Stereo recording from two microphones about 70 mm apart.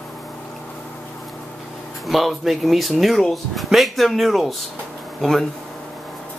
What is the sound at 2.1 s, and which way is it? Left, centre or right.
Speech, centre.